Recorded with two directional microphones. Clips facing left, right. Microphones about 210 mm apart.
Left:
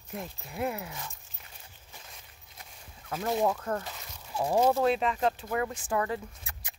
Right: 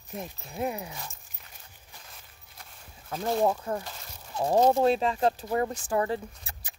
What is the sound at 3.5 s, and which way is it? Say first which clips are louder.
Speech: even; 10° right (ahead or behind).